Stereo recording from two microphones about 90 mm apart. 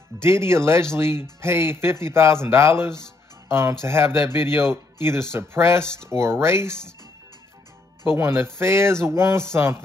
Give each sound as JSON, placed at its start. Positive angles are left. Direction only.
{"t": 0.2, "sound": "speech", "side_deg": -30}
{"t": 3.0, "sound": "music", "side_deg": -30}
{"t": 3.8, "sound": "speech", "side_deg": -30}
{"t": 8.0, "sound": "speech", "side_deg": -25}